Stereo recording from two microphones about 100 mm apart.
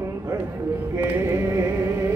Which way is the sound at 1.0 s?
25° right (ahead or behind).